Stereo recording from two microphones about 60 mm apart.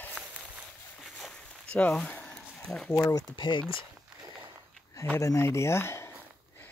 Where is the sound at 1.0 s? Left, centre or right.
Centre.